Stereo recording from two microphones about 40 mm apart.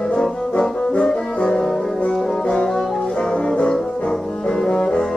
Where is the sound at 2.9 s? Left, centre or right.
Centre.